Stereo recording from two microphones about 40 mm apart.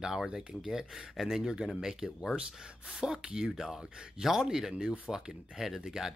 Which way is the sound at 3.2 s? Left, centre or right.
Centre.